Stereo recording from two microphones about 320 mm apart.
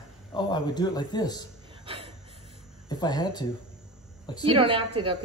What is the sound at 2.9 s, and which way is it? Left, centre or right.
Speech, centre.